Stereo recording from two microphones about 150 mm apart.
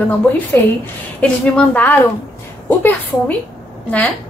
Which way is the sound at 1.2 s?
10° left (ahead or behind).